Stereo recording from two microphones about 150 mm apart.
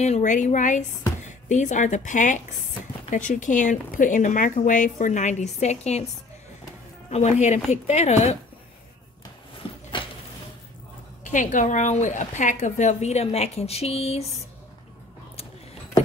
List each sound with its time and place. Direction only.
0.0 s speech: 50° left (ahead or behind)
7.1 s a woman's voice: 50° left (ahead or behind)
11.3 s a woman's voice: 55° left (ahead or behind)